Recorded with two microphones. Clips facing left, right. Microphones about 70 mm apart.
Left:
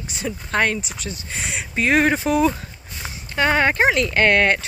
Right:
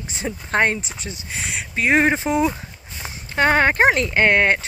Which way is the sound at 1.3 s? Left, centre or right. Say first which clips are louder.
Even; centre.